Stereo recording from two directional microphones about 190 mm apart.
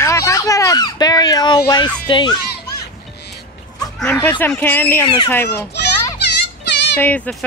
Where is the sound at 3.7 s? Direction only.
20° left (ahead or behind).